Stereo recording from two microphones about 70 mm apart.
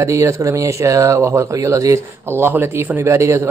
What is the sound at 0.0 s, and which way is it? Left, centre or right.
A man's voice, right.